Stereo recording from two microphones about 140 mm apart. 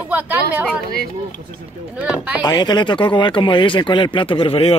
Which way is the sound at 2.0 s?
10° right (ahead or behind).